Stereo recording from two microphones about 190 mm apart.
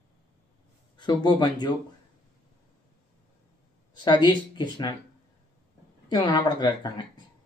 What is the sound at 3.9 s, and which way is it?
Speech, 20° left (ahead or behind).